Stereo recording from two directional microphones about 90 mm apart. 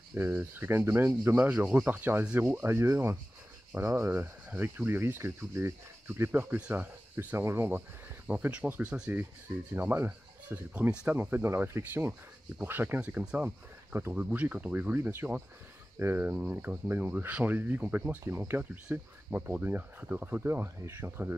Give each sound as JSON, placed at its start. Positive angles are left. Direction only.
{"t": 0.2, "sound": "speech", "side_deg": -20}
{"t": 2.6, "sound": "speech", "side_deg": -25}
{"t": 7.2, "sound": "speech", "side_deg": -25}
{"t": 13.2, "sound": "speech", "side_deg": -10}
{"t": 13.9, "sound": "speech", "side_deg": -25}
{"t": 14.3, "sound": "speech", "side_deg": -15}